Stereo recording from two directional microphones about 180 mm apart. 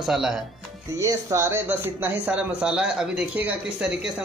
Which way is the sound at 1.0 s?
15° right (ahead or behind).